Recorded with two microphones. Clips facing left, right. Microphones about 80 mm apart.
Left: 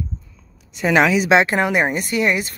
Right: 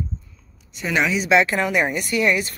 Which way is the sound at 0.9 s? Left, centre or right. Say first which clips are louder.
Left 5 dB; left.